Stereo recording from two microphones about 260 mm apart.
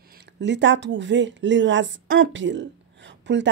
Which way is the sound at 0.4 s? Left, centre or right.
Right.